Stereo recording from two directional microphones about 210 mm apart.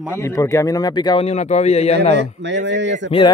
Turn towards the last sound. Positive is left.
turn(degrees=-55)  # may be behind; listen again after turning